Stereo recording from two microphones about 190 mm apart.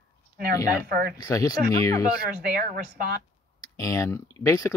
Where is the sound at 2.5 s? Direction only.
50° right (ahead or behind).